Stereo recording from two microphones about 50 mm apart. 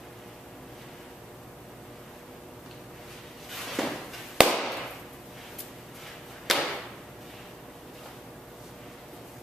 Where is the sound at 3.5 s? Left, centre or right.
Centre.